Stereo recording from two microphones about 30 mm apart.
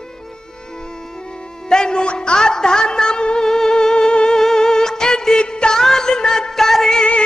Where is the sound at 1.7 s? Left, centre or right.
Left.